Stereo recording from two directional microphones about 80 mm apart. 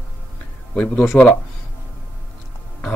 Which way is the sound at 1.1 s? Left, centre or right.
Left.